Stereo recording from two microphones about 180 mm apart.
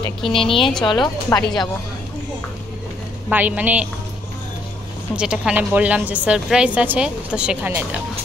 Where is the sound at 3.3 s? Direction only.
10° right (ahead or behind).